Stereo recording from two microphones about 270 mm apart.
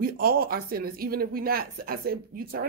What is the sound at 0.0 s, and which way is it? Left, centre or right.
Speech, right.